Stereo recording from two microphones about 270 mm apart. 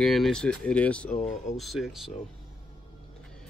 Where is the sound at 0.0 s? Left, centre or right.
Centre.